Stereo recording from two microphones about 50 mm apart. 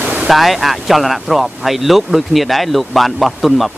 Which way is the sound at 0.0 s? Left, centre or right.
Right.